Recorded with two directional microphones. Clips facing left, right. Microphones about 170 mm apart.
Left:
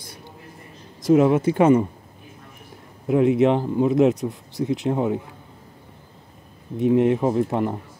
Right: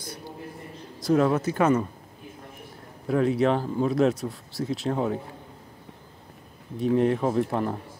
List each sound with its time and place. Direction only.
1.0 s speech: 20° left (ahead or behind)
3.1 s speech: 15° left (ahead or behind)
6.8 s speech: 20° left (ahead or behind)